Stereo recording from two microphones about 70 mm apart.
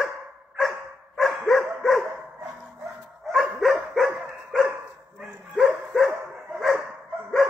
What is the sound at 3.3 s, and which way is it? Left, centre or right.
Dog, centre.